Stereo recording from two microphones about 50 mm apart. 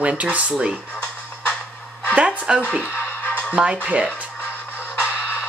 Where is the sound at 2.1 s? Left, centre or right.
Right.